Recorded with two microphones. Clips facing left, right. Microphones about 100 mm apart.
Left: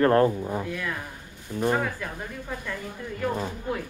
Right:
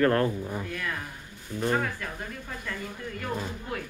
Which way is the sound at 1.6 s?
15° left (ahead or behind).